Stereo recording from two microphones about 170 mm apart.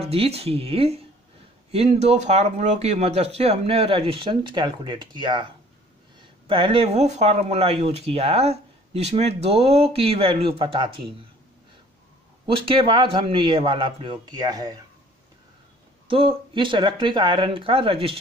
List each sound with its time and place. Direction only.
0.0 s speech: 35° right (ahead or behind)
12.4 s a man's voice: 30° right (ahead or behind)
16.1 s speech: 30° right (ahead or behind)